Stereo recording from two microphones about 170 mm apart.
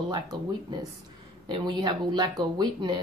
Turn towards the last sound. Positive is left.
turn(degrees=-25)  # may be behind; listen again after turning